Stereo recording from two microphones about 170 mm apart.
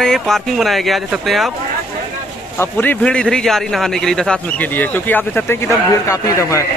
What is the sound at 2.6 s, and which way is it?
A man's voice, 10° left (ahead or behind).